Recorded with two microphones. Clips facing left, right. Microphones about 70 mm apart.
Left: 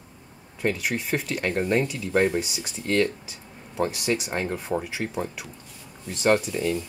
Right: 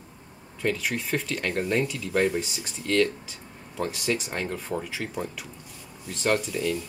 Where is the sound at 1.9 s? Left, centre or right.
Left.